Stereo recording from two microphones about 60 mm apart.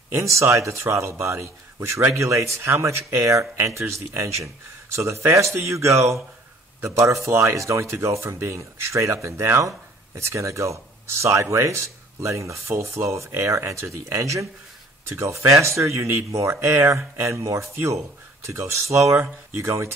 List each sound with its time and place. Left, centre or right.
0.1 s a man's voice: right
9.6 s a man's voice: right
16.5 s a man's voice: right
17.7 s a man's voice: right